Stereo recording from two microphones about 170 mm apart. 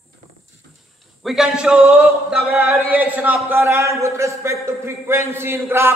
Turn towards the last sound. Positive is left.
turn(degrees=-15)  # may be behind; listen again after turning